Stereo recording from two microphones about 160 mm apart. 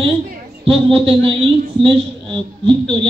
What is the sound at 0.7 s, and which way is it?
Speech, 35° right (ahead or behind).